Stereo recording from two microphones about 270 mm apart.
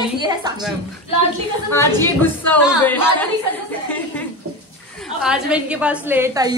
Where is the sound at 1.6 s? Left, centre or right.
Centre.